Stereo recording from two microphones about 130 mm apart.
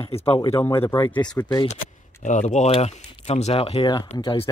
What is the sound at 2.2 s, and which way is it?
Speech, 65° left (ahead or behind).